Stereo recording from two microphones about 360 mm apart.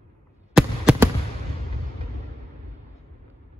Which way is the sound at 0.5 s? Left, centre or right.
Centre.